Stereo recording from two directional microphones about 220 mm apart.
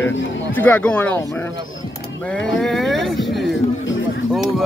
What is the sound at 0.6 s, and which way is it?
Speech, 5° left (ahead or behind).